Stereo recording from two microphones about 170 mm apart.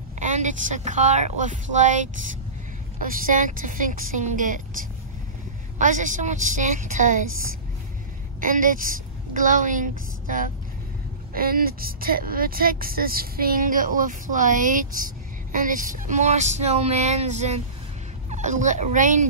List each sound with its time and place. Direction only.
0.2 s speech: 45° right (ahead or behind)
5.8 s speech: 50° right (ahead or behind)
8.4 s a woman's voice: 50° right (ahead or behind)